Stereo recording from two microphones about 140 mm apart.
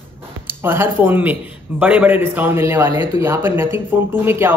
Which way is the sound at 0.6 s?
15° right (ahead or behind).